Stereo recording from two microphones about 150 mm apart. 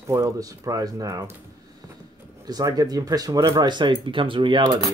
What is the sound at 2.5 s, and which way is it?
Speech, 25° right (ahead or behind).